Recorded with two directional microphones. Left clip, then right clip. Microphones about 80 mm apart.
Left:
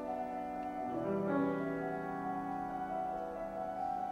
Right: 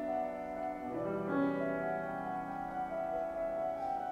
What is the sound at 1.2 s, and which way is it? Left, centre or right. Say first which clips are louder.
Music: right 3 dB; centre.